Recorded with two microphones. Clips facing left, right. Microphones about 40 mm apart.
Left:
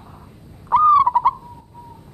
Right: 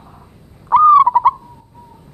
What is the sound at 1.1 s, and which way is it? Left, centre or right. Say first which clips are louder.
Bird: right 4 dB; centre.